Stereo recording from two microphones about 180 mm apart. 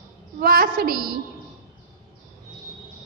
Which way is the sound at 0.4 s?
55° right (ahead or behind).